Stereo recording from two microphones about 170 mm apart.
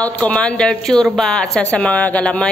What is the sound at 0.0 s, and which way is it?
A woman's voice, 10° left (ahead or behind).